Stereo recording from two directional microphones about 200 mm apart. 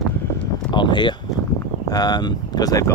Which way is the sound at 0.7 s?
20° left (ahead or behind).